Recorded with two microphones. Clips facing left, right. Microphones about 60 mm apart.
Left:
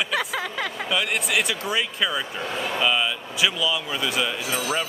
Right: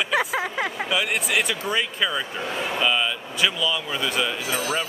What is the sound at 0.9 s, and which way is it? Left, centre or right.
Speech, centre.